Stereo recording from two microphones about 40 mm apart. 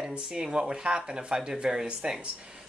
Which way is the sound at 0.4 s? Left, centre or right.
Right.